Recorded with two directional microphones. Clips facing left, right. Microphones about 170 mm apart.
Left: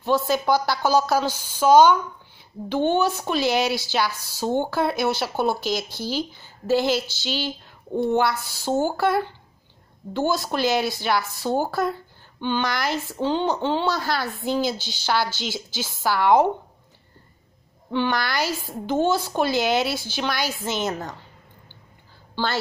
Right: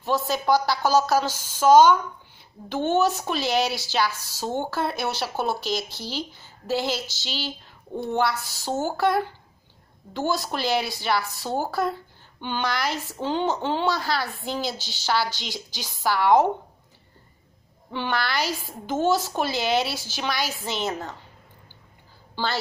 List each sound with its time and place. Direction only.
0.0 s speech: centre (ahead or behind)
8.1 s speech: centre (ahead or behind)
17.9 s a child's voice: 10° right (ahead or behind)